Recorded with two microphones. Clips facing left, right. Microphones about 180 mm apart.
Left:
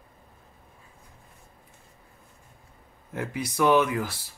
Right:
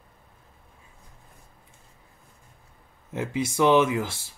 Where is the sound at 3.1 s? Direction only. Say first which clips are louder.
Right 4 dB; 25° right (ahead or behind).